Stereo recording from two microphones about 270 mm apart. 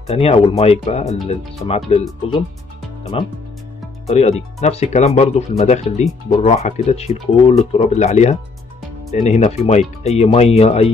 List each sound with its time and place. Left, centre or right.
0.0 s speech: left
3.1 s speech: left